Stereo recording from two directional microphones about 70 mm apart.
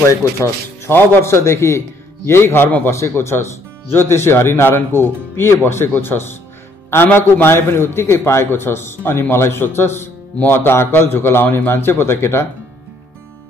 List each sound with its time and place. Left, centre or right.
0.1 s a man's voice: left